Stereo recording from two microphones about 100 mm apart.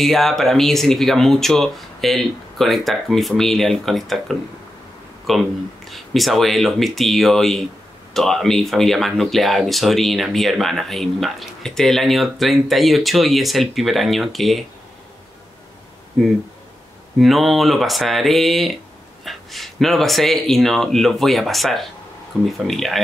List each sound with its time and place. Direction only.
0.0 s speech: centre (ahead or behind)
17.2 s speech: centre (ahead or behind)